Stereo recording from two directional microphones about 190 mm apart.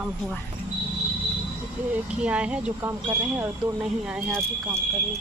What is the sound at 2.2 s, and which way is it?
Speech, 5° right (ahead or behind).